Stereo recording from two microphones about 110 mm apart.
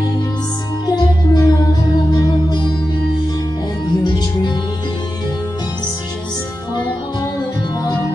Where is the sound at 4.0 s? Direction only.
40° left (ahead or behind).